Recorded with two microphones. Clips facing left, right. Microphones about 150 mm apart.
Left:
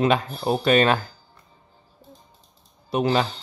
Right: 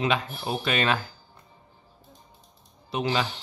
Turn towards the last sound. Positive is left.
turn(degrees=35)  # may be behind; listen again after turning